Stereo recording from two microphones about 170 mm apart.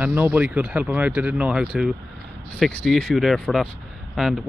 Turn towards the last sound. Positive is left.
turn(degrees=0)  # may be behind; listen again after turning